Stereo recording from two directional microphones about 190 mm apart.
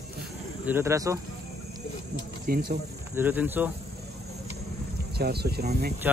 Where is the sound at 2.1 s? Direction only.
60° right (ahead or behind).